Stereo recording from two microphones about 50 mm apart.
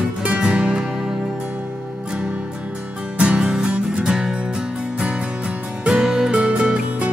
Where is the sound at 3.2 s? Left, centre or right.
Centre.